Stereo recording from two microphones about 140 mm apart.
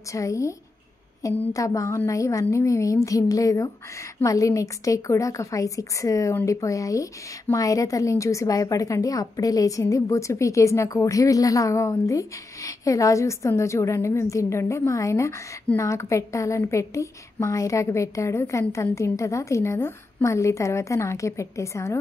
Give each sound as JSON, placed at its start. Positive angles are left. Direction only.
{"t": 0.1, "sound": "a woman's voice", "side_deg": 20}